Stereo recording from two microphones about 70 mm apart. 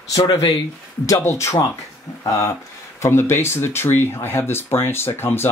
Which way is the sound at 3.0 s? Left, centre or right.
Left.